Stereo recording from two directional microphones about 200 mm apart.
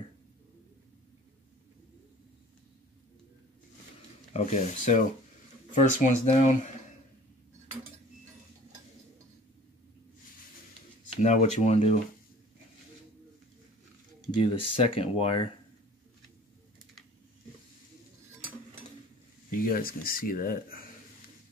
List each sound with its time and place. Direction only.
4.3 s speech: 35° left (ahead or behind)
11.1 s speech: 35° left (ahead or behind)
14.3 s speech: 30° left (ahead or behind)
19.5 s speech: 45° left (ahead or behind)